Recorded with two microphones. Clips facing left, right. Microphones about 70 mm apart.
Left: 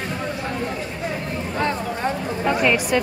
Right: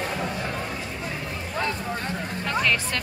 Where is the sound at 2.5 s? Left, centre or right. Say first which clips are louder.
Left 5 dB; centre.